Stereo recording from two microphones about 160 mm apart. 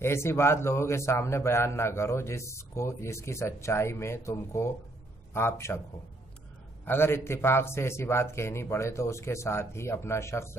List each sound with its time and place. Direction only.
0.0 s a man's voice: 15° left (ahead or behind)
6.8 s a man's voice: 15° left (ahead or behind)